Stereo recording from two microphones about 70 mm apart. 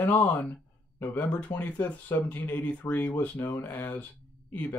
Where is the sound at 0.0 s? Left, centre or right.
Left.